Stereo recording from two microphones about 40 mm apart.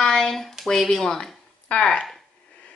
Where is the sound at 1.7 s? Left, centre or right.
Left.